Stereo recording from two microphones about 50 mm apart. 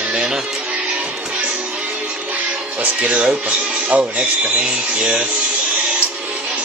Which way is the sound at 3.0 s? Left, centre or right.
Right.